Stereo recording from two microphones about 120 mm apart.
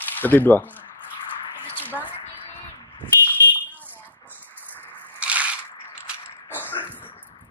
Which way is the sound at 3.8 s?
15° left (ahead or behind).